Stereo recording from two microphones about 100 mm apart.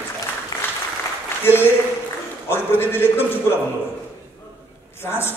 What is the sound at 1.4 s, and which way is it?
A man's voice, 20° left (ahead or behind).